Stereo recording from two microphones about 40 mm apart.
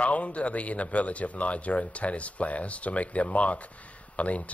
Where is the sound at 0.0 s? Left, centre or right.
Left.